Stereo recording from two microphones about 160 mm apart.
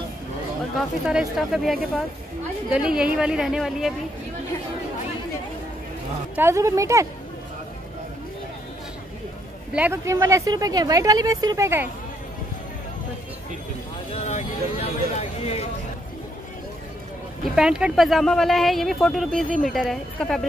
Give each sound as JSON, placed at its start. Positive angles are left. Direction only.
{"t": 0.7, "sound": "speech", "side_deg": -5}
{"t": 6.3, "sound": "speech", "side_deg": -15}
{"t": 9.8, "sound": "speech", "side_deg": -15}
{"t": 14.1, "sound": "a sound", "side_deg": 45}
{"t": 17.6, "sound": "speech", "side_deg": -5}